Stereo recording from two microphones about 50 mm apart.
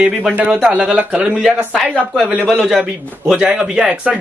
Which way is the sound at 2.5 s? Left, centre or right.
Centre.